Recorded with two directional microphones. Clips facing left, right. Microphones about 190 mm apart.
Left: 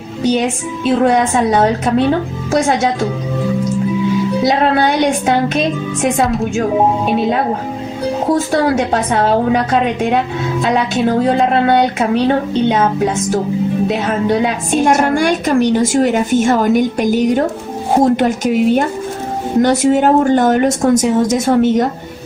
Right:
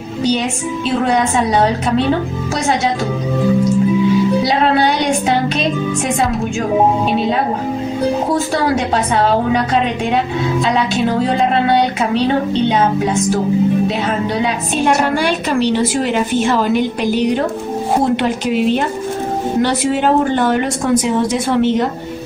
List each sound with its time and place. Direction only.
1.0 s a woman's voice: 50° left (ahead or behind)
4.5 s a woman's voice: 50° left (ahead or behind)
6.2 s speech: centre (ahead or behind)
8.7 s a woman's voice: 50° left (ahead or behind)
14.4 s a woman's voice: 50° left (ahead or behind)